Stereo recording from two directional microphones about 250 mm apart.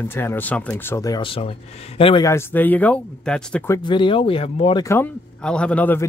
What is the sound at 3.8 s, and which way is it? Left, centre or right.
Speech, centre.